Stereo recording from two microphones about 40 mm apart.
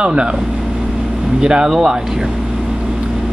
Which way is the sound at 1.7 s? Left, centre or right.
Centre.